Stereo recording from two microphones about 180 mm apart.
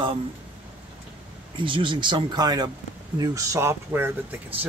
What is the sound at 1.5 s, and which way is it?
Speech, 30° right (ahead or behind).